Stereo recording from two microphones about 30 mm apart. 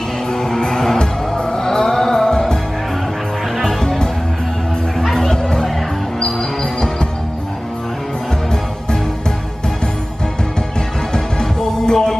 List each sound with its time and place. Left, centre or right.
0.3 s music: centre
0.9 s music: left
5.0 s music: centre
11.3 s music: left